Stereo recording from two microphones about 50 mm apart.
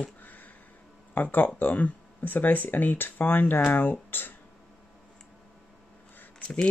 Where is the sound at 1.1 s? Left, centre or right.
Left.